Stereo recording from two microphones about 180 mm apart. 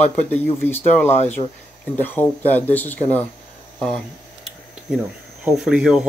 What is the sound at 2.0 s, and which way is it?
Speech, 10° left (ahead or behind).